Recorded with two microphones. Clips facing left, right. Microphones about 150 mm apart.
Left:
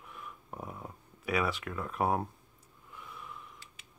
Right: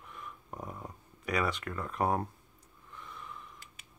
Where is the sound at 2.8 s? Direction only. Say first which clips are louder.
Even; 5° left (ahead or behind).